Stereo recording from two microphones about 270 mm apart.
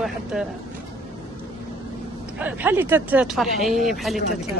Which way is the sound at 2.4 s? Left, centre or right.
Centre.